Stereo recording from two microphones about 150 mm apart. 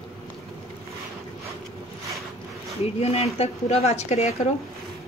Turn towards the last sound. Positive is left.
turn(degrees=45)  # may be behind; listen again after turning